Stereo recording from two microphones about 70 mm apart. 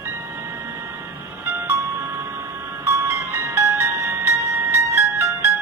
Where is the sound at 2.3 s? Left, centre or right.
Right.